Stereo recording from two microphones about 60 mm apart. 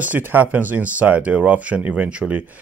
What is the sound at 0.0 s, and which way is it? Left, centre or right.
Speech, right.